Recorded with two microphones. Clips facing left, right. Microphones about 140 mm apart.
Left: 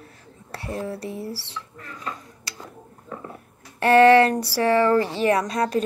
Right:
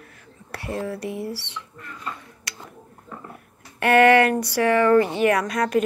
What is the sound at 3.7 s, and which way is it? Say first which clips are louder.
Speech: left 2 dB; 30° left (ahead or behind).